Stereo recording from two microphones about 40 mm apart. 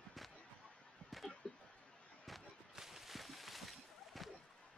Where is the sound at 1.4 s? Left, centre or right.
Centre.